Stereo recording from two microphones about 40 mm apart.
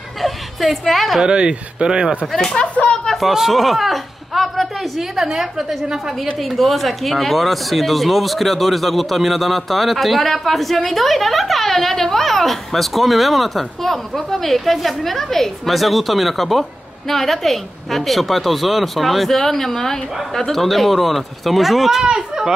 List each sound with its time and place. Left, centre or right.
0.2 s a woman's voice: centre
1.2 s speech: right
2.3 s speech: centre
3.2 s a woman's voice: centre